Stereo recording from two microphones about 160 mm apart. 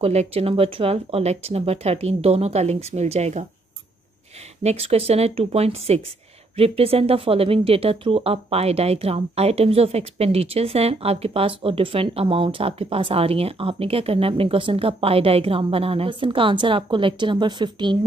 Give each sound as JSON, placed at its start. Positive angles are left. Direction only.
{"t": 0.0, "sound": "speech", "side_deg": -40}
{"t": 4.6, "sound": "speech", "side_deg": -40}